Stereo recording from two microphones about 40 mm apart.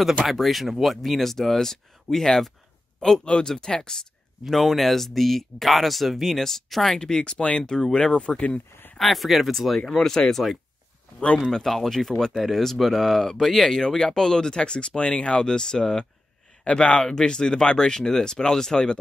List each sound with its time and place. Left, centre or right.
0.0 s speech: centre
4.5 s speech: centre
7.0 s speech: centre
8.9 s speech: centre
11.5 s speech: centre